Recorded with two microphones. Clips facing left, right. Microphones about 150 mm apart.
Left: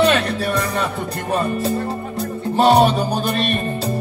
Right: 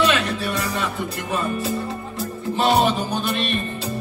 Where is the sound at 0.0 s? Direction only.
40° left (ahead or behind).